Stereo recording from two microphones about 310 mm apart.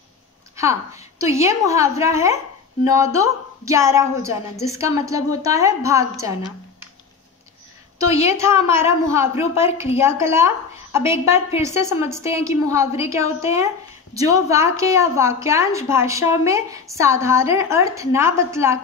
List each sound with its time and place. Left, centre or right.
0.6 s a woman's voice: centre
8.1 s a woman's voice: centre
8.4 s a woman's voice: centre